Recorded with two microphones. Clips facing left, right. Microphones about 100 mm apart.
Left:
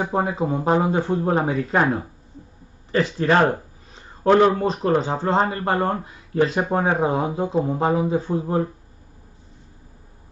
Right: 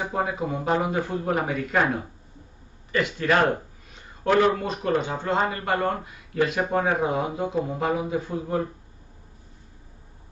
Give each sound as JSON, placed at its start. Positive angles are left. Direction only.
{"t": 0.1, "sound": "speech", "side_deg": 30}